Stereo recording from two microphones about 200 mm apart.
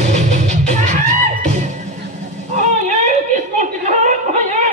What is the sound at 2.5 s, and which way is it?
Chuckle, 35° right (ahead or behind).